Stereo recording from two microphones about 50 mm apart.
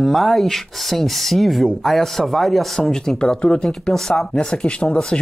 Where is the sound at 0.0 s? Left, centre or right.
Centre.